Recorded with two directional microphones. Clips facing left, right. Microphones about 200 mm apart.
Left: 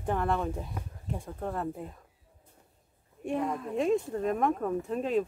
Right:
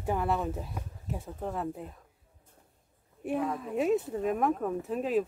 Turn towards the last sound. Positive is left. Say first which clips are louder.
# even
turn(degrees=-5)  # may be behind; listen again after turning